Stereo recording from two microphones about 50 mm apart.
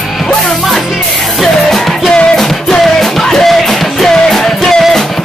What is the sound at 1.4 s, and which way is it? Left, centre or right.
Music, centre.